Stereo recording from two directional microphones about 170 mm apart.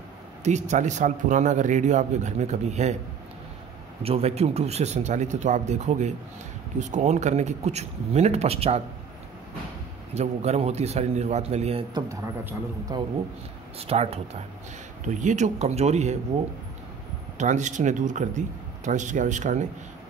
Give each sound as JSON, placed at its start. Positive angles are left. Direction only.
{"t": 0.4, "sound": "speech", "side_deg": -45}
{"t": 4.0, "sound": "a man's voice", "side_deg": -35}
{"t": 10.1, "sound": "a man's voice", "side_deg": -40}
{"t": 11.9, "sound": "a man's voice", "side_deg": -20}
{"t": 13.7, "sound": "a man's voice", "side_deg": -35}
{"t": 17.4, "sound": "speech", "side_deg": -45}